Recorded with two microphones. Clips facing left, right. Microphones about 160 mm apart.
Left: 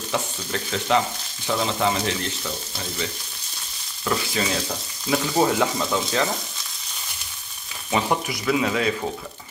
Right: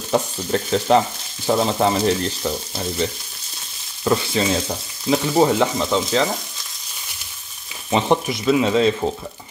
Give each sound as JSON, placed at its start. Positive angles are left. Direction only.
{"t": 0.1, "sound": "frying", "side_deg": -35}
{"t": 4.0, "sound": "speech", "side_deg": -30}
{"t": 7.9, "sound": "speech", "side_deg": -25}